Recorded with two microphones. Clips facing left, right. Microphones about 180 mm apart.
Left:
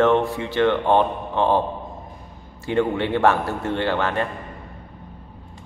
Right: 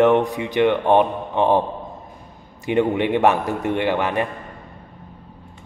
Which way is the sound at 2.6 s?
15° right (ahead or behind).